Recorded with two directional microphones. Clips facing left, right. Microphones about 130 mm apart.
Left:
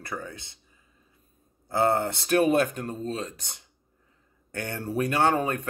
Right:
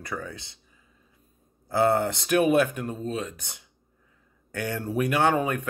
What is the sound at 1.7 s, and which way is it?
Speech, 20° left (ahead or behind).